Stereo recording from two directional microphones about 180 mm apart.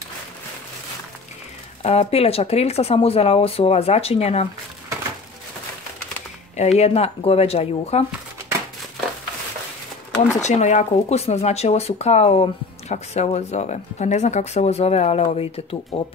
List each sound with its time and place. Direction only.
1.8 s speech: 35° left (ahead or behind)
6.5 s speech: 40° left (ahead or behind)
10.4 s speech: 40° left (ahead or behind)